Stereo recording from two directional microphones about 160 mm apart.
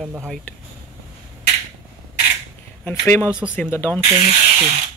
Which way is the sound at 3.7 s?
15° left (ahead or behind).